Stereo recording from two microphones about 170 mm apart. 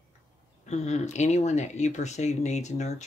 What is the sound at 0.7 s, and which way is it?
Speech, 40° left (ahead or behind).